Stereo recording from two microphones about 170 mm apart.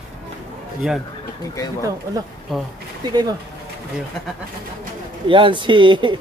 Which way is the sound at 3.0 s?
25° right (ahead or behind).